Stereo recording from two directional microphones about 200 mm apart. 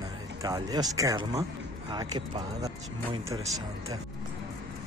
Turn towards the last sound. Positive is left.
turn(degrees=-20)  # may be behind; listen again after turning